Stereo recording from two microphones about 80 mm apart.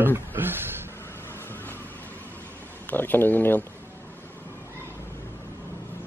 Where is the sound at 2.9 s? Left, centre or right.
Left.